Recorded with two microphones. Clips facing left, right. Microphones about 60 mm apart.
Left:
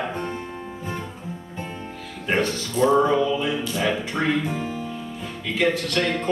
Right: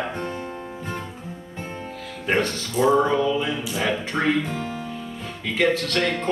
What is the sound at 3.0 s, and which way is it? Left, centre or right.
Speech, centre.